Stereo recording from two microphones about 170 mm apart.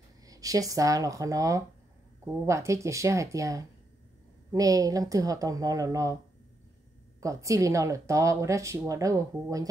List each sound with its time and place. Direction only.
0.3 s speech: 20° right (ahead or behind)
7.2 s speech: 20° right (ahead or behind)